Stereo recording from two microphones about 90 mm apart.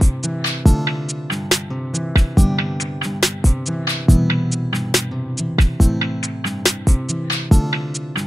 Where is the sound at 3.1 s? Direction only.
Centre (ahead or behind).